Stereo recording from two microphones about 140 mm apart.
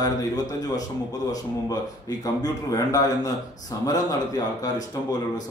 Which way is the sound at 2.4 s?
25° left (ahead or behind).